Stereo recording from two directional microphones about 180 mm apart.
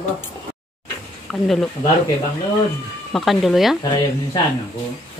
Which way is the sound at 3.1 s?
Centre (ahead or behind).